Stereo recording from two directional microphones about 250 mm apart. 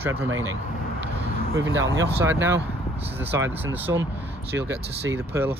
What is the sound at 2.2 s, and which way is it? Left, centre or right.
Speech, centre.